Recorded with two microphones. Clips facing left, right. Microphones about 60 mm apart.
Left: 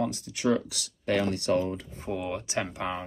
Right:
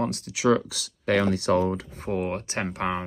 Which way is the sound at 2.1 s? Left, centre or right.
Right.